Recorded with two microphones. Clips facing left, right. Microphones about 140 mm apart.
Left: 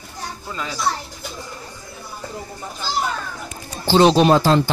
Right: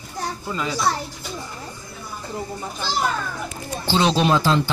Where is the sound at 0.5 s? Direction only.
5° right (ahead or behind).